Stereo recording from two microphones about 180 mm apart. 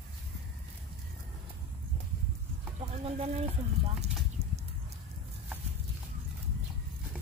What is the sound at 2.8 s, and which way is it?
Speech, 35° right (ahead or behind).